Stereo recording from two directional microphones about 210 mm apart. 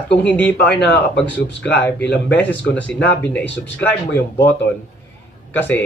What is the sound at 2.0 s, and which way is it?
Speech, 55° left (ahead or behind).